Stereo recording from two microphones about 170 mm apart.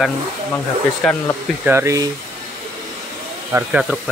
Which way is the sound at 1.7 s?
15° right (ahead or behind).